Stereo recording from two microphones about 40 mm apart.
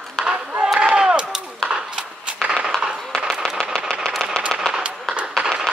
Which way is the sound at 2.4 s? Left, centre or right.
Right.